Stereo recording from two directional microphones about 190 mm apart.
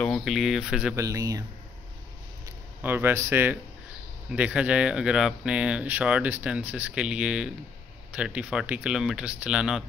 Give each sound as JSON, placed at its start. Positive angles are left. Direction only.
{"t": 0.0, "sound": "speech", "side_deg": 5}
{"t": 0.9, "sound": "speech", "side_deg": -15}
{"t": 2.4, "sound": "speech", "side_deg": -10}